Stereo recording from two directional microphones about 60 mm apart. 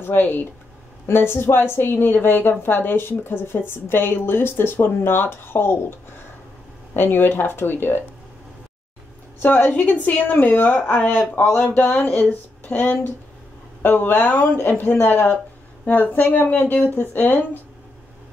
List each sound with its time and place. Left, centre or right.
0.0 s a woman's voice: left
9.4 s a woman's voice: left